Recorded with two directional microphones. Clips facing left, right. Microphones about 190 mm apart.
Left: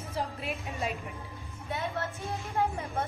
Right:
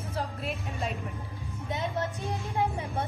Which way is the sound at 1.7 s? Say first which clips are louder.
Right 2 dB; 15° right (ahead or behind).